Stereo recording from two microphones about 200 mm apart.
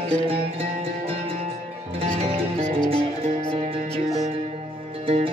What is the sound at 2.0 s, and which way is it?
Music, 30° right (ahead or behind).